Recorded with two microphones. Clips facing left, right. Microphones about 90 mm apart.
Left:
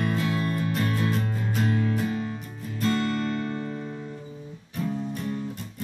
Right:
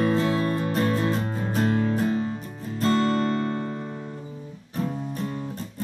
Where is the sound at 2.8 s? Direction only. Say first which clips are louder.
Right 4 dB; 35° right (ahead or behind).